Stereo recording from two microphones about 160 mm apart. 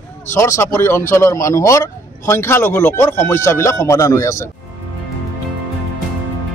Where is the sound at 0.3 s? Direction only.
15° left (ahead or behind).